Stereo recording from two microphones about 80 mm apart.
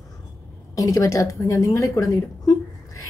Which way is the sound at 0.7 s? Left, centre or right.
Left.